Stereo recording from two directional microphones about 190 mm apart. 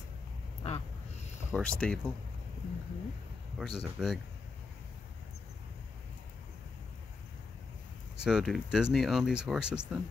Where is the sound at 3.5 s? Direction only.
Centre (ahead or behind).